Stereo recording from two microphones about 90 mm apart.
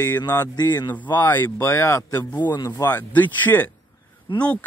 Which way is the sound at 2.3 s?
50° left (ahead or behind).